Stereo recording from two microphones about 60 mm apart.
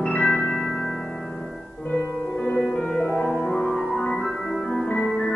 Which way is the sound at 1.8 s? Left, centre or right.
Centre.